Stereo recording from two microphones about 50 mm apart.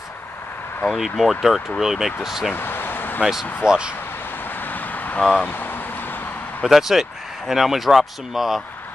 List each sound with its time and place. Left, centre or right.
0.9 s speech: centre
2.5 s a sound: left
3.6 s speech: centre
4.6 s vehicle: left
5.4 s speech: left
6.6 s speech: centre